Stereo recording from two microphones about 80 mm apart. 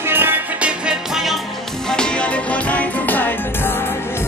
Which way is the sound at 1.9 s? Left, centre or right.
Centre.